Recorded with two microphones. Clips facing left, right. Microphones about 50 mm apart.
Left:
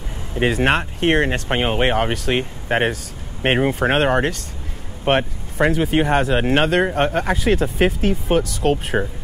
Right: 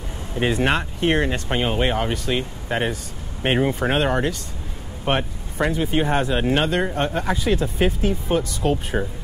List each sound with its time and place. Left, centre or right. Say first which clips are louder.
0.6 s speech: left 3 dB; left
8.9 s speech: left 3 dB; left